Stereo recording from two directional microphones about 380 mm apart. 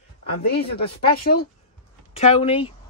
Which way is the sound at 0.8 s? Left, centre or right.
Centre.